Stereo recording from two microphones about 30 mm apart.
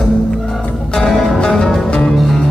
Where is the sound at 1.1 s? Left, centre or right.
Centre.